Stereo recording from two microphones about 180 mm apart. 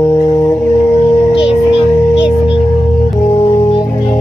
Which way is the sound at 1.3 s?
30° left (ahead or behind).